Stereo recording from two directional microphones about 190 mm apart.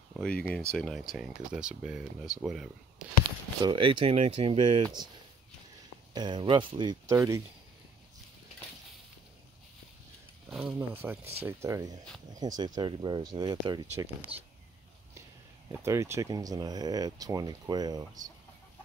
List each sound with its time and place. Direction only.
0.1 s speech: 5° left (ahead or behind)
3.6 s speech: 25° right (ahead or behind)
6.1 s speech: 25° right (ahead or behind)
10.5 s speech: 5° right (ahead or behind)
15.7 s speech: 15° right (ahead or behind)